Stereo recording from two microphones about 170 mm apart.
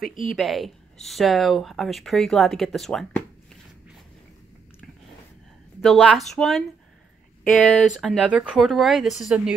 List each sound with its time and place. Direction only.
0.0 s a woman's voice: 50° left (ahead or behind)
0.4 s speech: centre (ahead or behind)
5.8 s speech: centre (ahead or behind)